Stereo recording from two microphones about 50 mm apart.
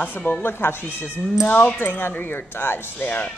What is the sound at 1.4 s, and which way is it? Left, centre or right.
Speech, left.